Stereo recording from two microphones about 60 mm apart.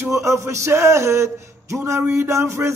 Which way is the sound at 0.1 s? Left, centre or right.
Right.